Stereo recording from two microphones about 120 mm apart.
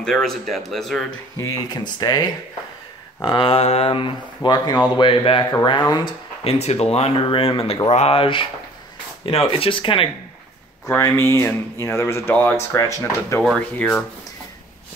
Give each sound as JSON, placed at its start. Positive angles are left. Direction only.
{"t": 0.0, "sound": "speech", "side_deg": 5}
{"t": 1.3, "sound": "speech", "side_deg": 25}
{"t": 6.4, "sound": "speech", "side_deg": 60}
{"t": 10.9, "sound": "speech", "side_deg": 20}
{"t": 13.4, "sound": "speech", "side_deg": 5}
{"t": 13.7, "sound": "speech", "side_deg": 15}